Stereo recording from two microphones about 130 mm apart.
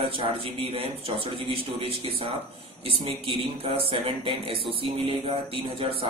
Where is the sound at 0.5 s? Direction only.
50° right (ahead or behind).